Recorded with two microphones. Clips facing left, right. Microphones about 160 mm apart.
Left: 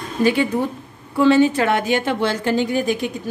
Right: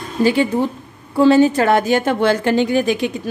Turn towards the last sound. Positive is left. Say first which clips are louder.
# right 4 dB
turn(degrees=-85)